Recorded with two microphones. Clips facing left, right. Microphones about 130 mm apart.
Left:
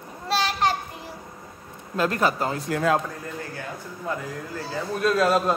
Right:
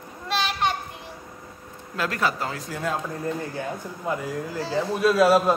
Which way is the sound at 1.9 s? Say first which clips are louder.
Left 3 dB; 35° left (ahead or behind).